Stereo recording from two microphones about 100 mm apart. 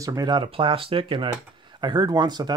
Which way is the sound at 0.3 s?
55° right (ahead or behind).